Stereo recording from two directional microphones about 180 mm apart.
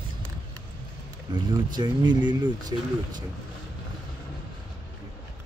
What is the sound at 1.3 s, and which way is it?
Speech, 25° right (ahead or behind).